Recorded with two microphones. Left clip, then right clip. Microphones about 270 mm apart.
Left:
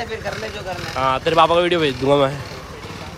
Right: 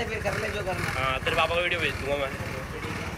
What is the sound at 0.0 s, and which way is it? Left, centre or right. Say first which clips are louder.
Vehicle: left 3 dB; left.